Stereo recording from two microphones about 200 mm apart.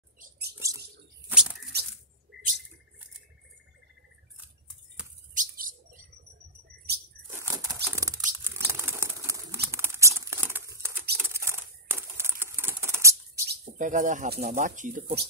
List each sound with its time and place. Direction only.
0.2 s bird: 55° right (ahead or behind)
1.3 s a sound: 5° right (ahead or behind)
5.3 s bird: 40° right (ahead or behind)
7.2 s a sound: 15° right (ahead or behind)
10.8 s bird: 15° right (ahead or behind)
11.1 s typing: 10° right (ahead or behind)
13.5 s speech: 40° right (ahead or behind)